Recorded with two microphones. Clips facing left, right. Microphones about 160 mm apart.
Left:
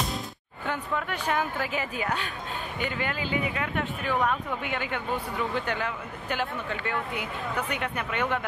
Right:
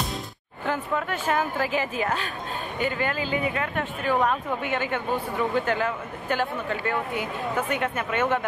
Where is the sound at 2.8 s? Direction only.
45° right (ahead or behind).